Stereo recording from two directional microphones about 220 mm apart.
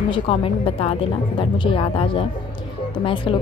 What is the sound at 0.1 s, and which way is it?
Speech, 25° left (ahead or behind).